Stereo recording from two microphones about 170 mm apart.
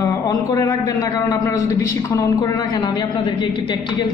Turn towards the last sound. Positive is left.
turn(degrees=25)  # may be behind; listen again after turning